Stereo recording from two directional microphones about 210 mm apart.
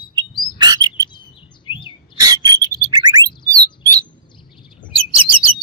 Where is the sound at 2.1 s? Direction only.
15° right (ahead or behind).